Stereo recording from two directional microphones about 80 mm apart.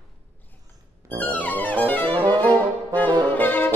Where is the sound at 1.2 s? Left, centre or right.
Left.